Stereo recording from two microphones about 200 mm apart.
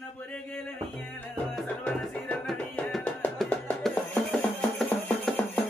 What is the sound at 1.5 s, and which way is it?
Music, 5° left (ahead or behind).